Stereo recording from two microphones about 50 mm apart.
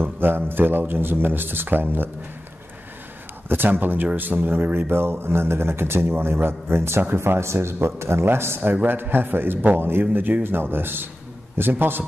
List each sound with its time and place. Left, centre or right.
0.0 s speech: right
3.4 s speech: right
7.2 s speech: right